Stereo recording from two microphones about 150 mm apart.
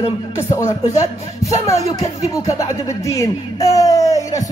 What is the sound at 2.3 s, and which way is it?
A man's voice, 20° left (ahead or behind).